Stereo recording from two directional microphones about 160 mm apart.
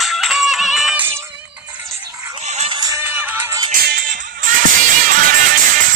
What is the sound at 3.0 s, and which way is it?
Music, 10° right (ahead or behind).